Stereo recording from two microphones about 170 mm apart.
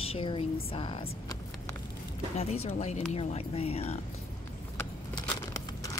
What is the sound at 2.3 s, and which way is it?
Speech, 40° left (ahead or behind).